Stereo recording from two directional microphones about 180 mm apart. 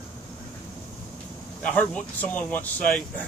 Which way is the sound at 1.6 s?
5° left (ahead or behind).